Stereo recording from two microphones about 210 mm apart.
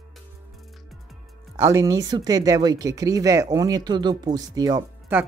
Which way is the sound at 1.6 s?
15° right (ahead or behind).